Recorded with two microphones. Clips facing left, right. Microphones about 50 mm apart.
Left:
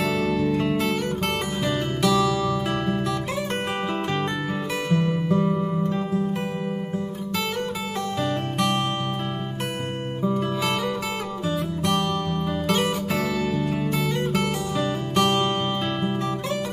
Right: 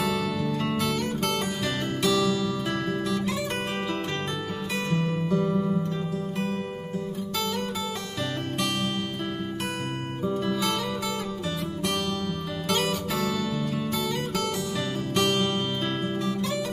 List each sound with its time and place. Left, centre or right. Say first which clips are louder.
0.1 s music: left 5 dB; centre
2.0 s music: left 3 dB; left
4.9 s music: left 4 dB; left
8.5 s music: left 5 dB; left
10.2 s music: left 2 dB; left
11.4 s guitar: left 8 dB; left
14.0 s music: left 4 dB; left